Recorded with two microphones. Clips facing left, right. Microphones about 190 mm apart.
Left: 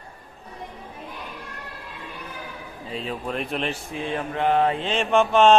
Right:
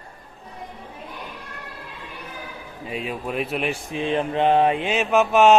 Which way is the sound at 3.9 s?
20° right (ahead or behind).